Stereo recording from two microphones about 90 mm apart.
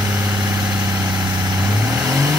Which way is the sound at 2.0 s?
35° right (ahead or behind).